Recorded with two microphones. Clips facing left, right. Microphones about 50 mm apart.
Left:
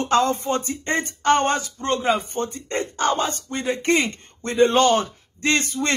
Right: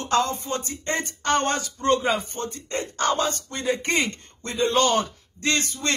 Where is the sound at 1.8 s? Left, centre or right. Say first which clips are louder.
Right 2 dB; centre.